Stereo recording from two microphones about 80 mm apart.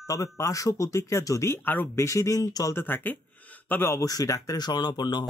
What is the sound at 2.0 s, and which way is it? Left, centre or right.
Speech, left.